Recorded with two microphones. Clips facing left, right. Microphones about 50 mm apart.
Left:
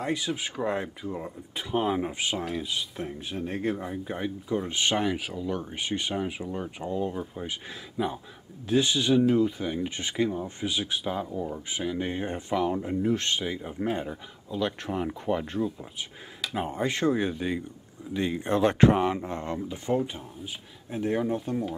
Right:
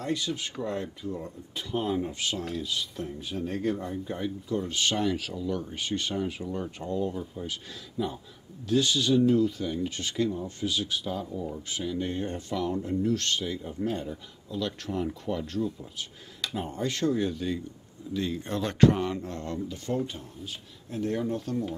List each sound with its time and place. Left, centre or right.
0.0 s speech: centre
0.6 s speech: left
8.6 s speech: left